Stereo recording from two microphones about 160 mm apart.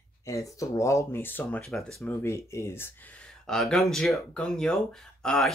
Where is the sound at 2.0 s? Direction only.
15° left (ahead or behind).